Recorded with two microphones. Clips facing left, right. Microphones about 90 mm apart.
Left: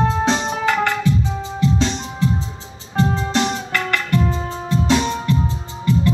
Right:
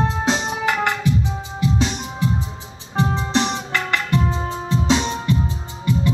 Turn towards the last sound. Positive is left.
turn(degrees=-15)  # may be behind; listen again after turning